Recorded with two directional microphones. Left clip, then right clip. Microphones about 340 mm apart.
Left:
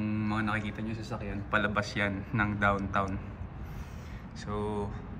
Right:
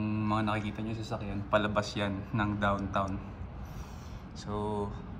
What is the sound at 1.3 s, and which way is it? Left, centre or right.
Speech, centre.